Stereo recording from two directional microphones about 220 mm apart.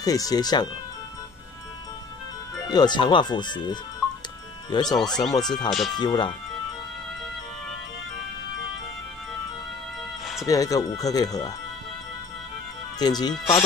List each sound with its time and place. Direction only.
0.0 s speech: 15° left (ahead or behind)
2.7 s speech: 20° left (ahead or behind)
5.0 s speech: centre (ahead or behind)
5.9 s speech: 20° left (ahead or behind)
10.4 s speech: 15° left (ahead or behind)
13.0 s speech: 20° left (ahead or behind)